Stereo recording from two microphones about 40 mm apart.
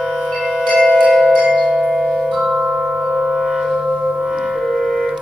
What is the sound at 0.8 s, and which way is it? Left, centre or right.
Music, left.